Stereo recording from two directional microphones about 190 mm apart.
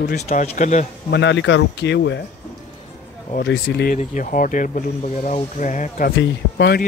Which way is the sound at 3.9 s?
40° left (ahead or behind).